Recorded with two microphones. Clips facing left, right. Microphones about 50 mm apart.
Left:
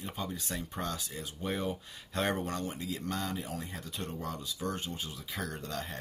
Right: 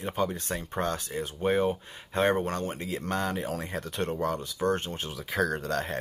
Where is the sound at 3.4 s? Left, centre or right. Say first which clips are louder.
Right 7 dB; right.